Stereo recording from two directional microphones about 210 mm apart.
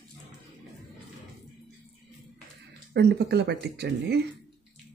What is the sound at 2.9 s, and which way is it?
Speech, 55° right (ahead or behind).